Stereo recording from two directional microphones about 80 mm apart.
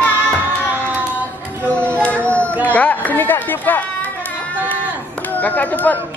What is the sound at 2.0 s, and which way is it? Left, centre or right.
Children playing, centre.